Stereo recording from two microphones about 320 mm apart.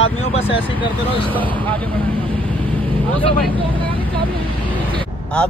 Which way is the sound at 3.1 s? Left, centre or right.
Centre.